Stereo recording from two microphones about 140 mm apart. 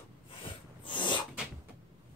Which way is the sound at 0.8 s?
35° left (ahead or behind).